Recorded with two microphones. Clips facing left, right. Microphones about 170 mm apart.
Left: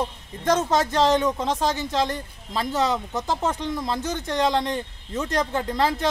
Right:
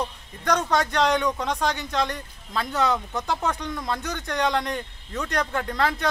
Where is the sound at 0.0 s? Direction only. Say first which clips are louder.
Left 3 dB; 25° left (ahead or behind).